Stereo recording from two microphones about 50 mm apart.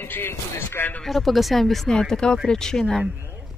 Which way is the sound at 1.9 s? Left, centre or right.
Centre.